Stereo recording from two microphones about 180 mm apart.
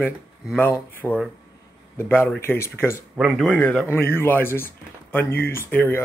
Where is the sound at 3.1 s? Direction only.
5° right (ahead or behind).